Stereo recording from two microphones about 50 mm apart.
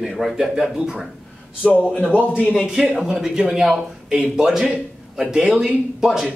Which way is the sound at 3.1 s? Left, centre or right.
Centre.